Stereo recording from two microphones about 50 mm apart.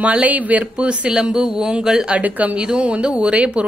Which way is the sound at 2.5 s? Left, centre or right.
Right.